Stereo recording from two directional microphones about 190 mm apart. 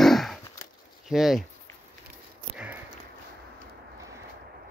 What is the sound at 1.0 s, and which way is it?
Speech, centre (ahead or behind).